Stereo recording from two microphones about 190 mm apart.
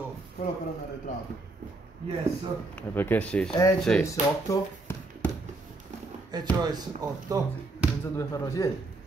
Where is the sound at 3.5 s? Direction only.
20° left (ahead or behind).